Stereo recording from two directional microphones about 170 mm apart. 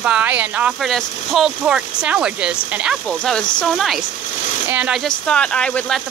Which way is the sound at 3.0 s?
5° left (ahead or behind).